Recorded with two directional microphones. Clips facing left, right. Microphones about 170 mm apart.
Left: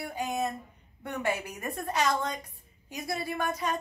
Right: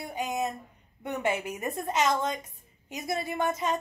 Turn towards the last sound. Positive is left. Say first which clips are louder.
# right 2 dB
turn(degrees=-20)  # may be behind; listen again after turning